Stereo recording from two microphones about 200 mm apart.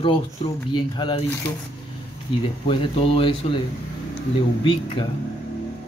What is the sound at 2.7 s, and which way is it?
Speech, 25° left (ahead or behind).